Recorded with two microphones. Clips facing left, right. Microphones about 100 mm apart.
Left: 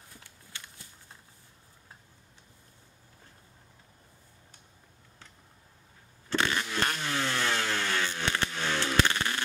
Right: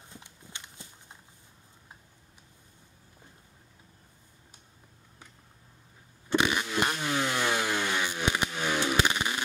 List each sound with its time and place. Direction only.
0.1 s horse: 20° right (ahead or behind)
6.2 s vehicle: 15° right (ahead or behind)